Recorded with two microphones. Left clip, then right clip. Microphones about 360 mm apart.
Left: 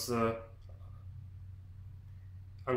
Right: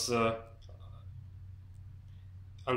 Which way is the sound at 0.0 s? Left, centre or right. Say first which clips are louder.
Right 3 dB; centre.